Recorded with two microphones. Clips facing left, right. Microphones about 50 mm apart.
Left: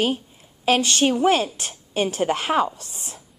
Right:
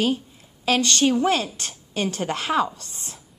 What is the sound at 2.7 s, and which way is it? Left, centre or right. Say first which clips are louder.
Speech: left 1 dB; right.